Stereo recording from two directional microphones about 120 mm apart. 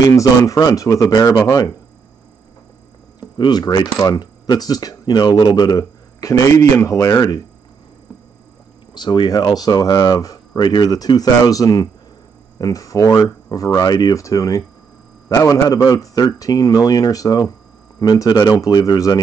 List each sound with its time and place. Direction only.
0.0 s speech: 30° left (ahead or behind)
3.3 s speech: 35° left (ahead or behind)
8.9 s speech: 40° left (ahead or behind)